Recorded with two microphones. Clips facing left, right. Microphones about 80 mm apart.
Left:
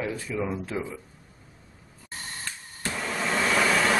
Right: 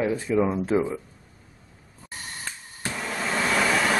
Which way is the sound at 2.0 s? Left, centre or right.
Centre.